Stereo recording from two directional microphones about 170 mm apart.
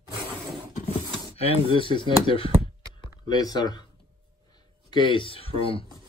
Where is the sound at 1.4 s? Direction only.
30° left (ahead or behind).